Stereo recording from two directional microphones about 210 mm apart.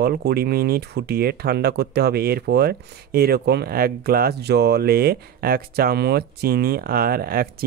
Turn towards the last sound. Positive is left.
turn(degrees=-45)  # may be behind; listen again after turning